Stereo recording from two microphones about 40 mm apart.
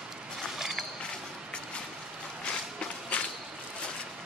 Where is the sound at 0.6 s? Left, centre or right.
Centre.